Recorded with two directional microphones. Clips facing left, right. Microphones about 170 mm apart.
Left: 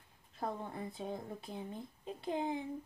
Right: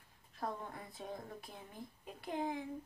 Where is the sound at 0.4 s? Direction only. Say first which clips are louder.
Left 3 dB; 25° left (ahead or behind).